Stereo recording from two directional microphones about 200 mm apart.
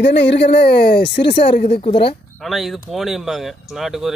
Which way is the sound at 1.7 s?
25° left (ahead or behind).